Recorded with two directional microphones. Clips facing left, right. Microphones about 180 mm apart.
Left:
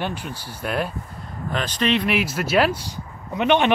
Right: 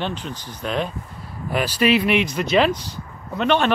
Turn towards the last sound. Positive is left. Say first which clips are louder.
# left 1 dB
turn(degrees=15)  # may be behind; listen again after turning